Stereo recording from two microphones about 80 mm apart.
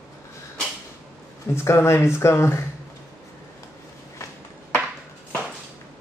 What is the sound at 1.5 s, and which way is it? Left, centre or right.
Speech, left.